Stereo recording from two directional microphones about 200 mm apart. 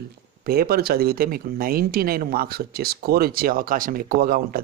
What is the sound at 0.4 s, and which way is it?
Speech, 50° right (ahead or behind).